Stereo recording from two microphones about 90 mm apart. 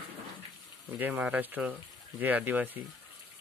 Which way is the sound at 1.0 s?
15° right (ahead or behind).